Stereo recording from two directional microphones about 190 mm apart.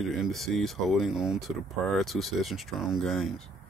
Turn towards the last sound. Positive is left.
turn(degrees=0)  # may be behind; listen again after turning